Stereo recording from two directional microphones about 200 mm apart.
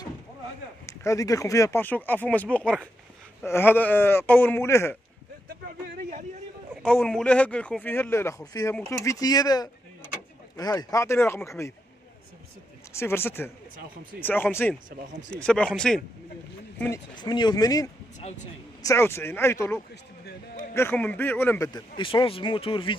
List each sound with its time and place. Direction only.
0.8 s speech: 15° left (ahead or behind)
5.7 s speech: 40° right (ahead or behind)
6.8 s speech: 5° left (ahead or behind)
12.9 s speech: 10° left (ahead or behind)
17.1 s speech: 20° left (ahead or behind)
20.2 s a sound: 40° left (ahead or behind)
20.7 s speech: 10° left (ahead or behind); by 22.9 s 25° left (ahead or behind)